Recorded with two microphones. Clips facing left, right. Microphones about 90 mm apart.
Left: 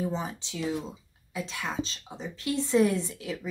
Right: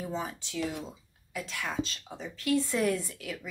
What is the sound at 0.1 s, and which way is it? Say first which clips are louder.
A woman's voice: left 1 dB; 25° left (ahead or behind).